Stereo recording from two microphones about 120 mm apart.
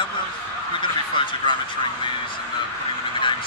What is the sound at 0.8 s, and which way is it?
Speech, 45° left (ahead or behind).